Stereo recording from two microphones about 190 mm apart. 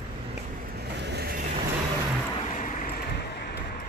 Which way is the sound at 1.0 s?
60° right (ahead or behind).